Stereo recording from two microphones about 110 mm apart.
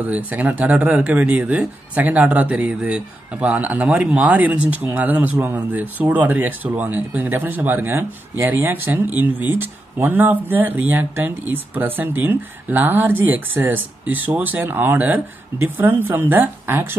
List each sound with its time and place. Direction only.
0.0 s speech: 15° right (ahead or behind)